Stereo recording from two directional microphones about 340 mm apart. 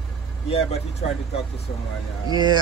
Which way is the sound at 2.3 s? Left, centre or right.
Centre.